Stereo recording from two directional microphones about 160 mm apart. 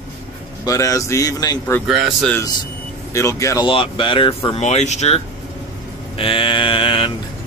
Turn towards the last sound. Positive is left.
turn(degrees=35)  # may be behind; listen again after turning